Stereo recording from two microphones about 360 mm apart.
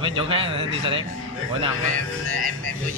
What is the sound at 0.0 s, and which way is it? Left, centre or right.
Speech, centre.